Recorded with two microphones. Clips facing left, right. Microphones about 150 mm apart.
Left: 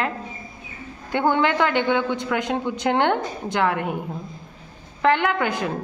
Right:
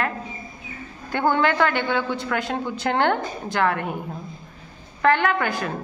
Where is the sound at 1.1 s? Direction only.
15° left (ahead or behind).